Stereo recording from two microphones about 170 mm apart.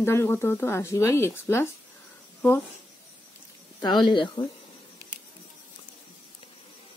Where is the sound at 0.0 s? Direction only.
15° left (ahead or behind).